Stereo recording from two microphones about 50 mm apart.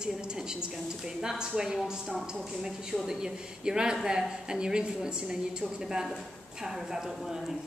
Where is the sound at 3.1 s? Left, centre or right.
Centre.